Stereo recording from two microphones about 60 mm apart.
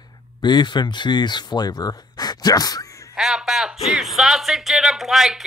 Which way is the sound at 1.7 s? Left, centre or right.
Left.